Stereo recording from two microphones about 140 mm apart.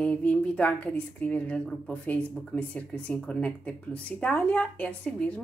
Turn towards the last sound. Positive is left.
turn(degrees=10)  # may be behind; listen again after turning